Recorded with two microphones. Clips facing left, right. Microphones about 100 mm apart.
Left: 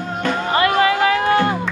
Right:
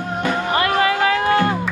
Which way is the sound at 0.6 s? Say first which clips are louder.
Left 3 dB; 20° left (ahead or behind).